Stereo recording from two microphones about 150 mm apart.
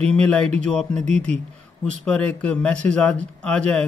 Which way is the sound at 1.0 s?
50° right (ahead or behind).